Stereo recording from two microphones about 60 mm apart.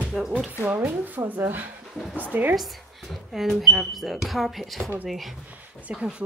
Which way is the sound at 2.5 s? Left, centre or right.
Centre.